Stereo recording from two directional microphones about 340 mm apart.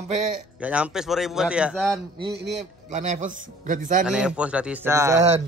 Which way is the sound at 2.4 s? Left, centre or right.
Right.